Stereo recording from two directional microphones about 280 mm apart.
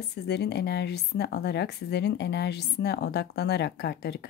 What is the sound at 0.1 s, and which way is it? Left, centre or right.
Speech, left.